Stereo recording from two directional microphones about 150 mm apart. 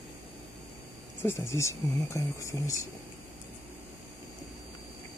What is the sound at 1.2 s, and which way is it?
Speech, 15° left (ahead or behind).